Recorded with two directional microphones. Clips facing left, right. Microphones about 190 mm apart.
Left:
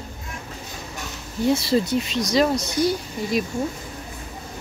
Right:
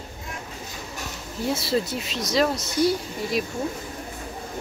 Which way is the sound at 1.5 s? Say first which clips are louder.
Left 5 dB; 5° right (ahead or behind).